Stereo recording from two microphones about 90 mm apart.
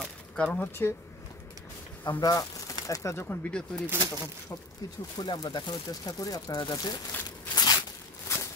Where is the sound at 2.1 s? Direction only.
50° left (ahead or behind).